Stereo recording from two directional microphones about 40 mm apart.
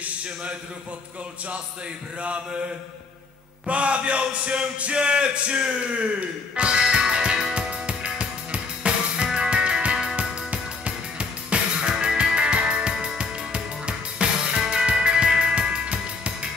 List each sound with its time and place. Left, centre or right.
3.6 s a man's voice: right
6.9 s music: right